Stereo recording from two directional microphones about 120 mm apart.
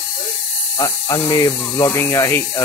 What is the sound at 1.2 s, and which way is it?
Speech, 30° left (ahead or behind).